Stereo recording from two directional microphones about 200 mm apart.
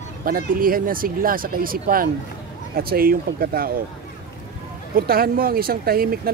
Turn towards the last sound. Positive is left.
turn(degrees=-50)  # may be behind; listen again after turning